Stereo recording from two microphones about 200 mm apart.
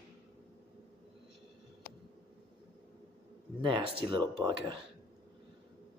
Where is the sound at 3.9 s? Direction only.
25° right (ahead or behind).